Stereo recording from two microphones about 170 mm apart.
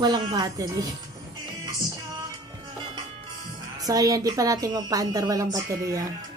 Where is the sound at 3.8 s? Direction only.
20° right (ahead or behind).